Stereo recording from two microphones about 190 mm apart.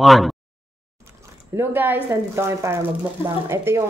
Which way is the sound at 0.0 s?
Centre (ahead or behind).